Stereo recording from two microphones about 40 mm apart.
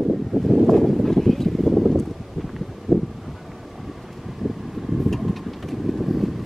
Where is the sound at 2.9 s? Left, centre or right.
Centre.